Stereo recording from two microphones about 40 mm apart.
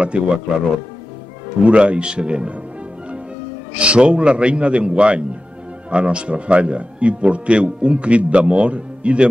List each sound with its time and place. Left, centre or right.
0.1 s speech: right
1.6 s a man's voice: right
3.8 s a man's voice: right